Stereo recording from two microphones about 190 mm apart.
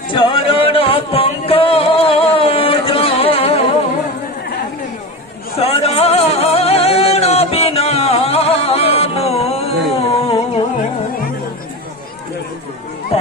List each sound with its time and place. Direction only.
0.1 s music: 25° left (ahead or behind)
5.6 s music: 30° left (ahead or behind)